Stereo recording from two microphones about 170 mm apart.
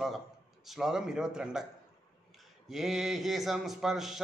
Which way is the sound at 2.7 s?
Centre (ahead or behind).